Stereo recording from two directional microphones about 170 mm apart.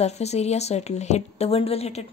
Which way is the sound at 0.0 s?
40° left (ahead or behind).